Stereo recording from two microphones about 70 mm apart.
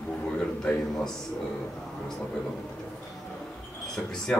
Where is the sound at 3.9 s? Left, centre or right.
Centre.